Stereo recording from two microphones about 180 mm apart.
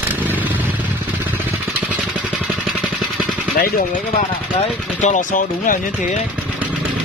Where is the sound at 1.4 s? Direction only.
10° right (ahead or behind).